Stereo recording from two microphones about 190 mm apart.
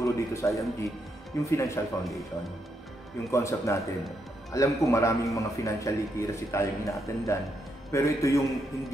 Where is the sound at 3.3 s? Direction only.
15° left (ahead or behind).